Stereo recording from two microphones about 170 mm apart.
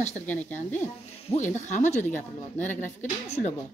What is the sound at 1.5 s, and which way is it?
Speech, 45° left (ahead or behind).